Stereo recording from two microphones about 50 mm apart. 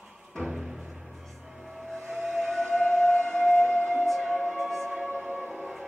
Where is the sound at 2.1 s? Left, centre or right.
Centre.